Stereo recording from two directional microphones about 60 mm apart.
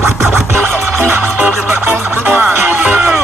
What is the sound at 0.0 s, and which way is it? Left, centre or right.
Music, right.